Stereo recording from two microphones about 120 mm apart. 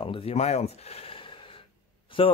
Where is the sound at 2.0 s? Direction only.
50° left (ahead or behind).